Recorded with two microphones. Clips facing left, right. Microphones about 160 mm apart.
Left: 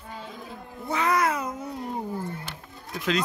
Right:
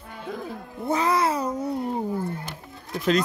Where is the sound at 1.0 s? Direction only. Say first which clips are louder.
Even; 30° right (ahead or behind).